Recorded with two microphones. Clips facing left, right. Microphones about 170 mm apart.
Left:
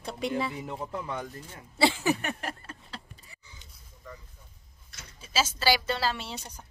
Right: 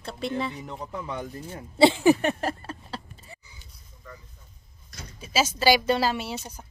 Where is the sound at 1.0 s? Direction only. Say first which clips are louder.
Right 2 dB; 20° right (ahead or behind); by 3.3 s 35° right (ahead or behind).